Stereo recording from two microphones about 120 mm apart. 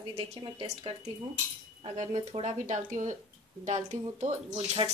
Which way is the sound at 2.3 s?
65° right (ahead or behind).